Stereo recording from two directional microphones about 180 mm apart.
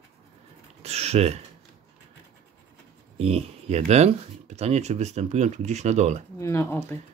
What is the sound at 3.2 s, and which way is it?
Speech, 35° right (ahead or behind).